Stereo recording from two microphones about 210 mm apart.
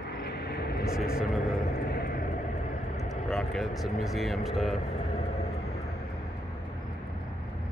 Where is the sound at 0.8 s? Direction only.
5° right (ahead or behind).